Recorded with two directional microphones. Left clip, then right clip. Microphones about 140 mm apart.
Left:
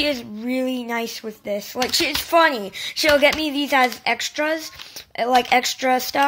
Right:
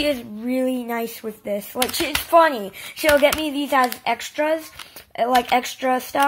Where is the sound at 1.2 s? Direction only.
5° left (ahead or behind).